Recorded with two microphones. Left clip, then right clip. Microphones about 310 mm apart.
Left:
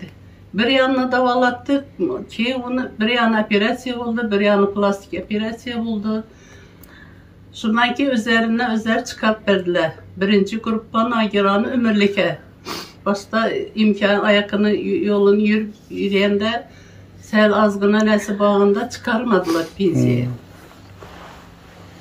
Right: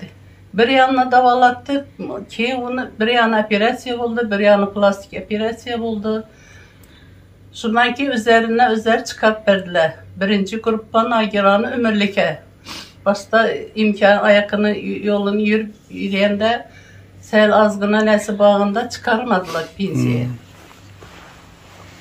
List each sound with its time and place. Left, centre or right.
0.6 s speech: centre
7.5 s speech: centre
12.7 s speech: centre
13.0 s speech: centre